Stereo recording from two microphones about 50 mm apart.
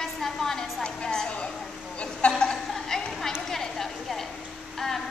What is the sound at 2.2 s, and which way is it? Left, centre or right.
Chuckle, left.